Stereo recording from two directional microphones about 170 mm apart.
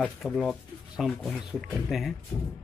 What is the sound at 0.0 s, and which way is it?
Speech, 5° left (ahead or behind).